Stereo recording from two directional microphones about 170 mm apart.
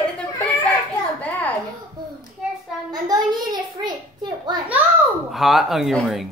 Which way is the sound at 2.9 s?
25° right (ahead or behind).